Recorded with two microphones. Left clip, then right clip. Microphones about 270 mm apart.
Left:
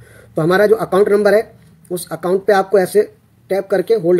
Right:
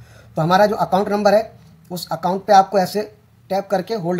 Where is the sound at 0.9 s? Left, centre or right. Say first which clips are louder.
Left 6 dB; right.